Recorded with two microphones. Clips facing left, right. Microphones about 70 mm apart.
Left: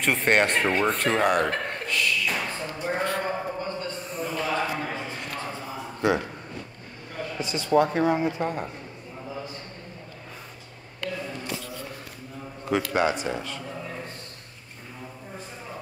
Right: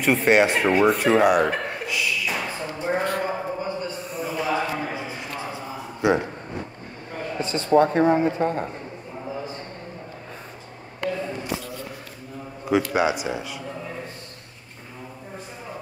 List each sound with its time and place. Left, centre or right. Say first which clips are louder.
0.0 s speech: right 4 dB; centre
2.8 s a sound: right 3 dB; centre
7.3 s speech: right 3 dB; right
12.9 s speech: right 2 dB; centre